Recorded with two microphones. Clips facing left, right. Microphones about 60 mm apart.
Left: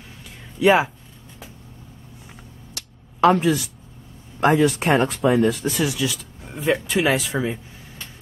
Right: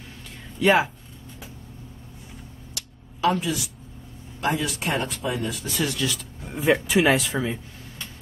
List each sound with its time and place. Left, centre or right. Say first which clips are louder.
0.6 s speech: left 3 dB; centre
2.7 s a sound: even; left
4.5 s speech: left 8 dB; left
5.8 s speech: left 3 dB; centre